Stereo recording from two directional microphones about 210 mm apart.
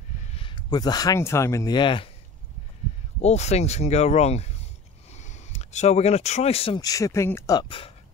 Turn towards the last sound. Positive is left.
turn(degrees=20)  # may be behind; listen again after turning